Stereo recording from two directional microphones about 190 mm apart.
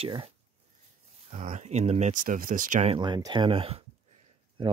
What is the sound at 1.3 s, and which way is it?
Speech, 40° right (ahead or behind).